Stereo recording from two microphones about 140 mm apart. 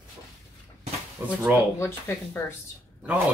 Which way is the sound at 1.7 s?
15° left (ahead or behind).